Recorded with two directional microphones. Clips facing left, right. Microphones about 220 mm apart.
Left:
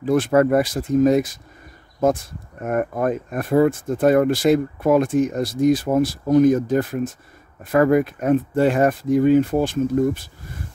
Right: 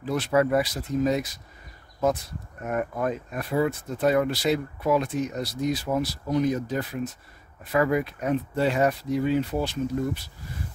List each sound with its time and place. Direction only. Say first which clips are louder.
0.0 s speech: left 7 dB; 50° left (ahead or behind)
2.6 s speech: left 6 dB; 50° left (ahead or behind)